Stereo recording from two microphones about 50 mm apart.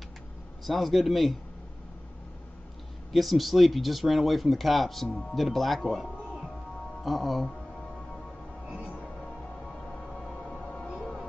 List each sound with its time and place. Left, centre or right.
0.7 s speech: centre
3.1 s speech: centre
11.0 s music: centre